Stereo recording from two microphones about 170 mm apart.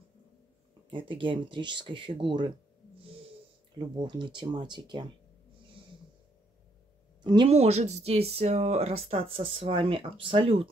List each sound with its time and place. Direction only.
0.8 s speech: 30° right (ahead or behind)
3.7 s speech: 25° right (ahead or behind)
7.2 s speech: 25° right (ahead or behind)
7.5 s speech: 40° right (ahead or behind)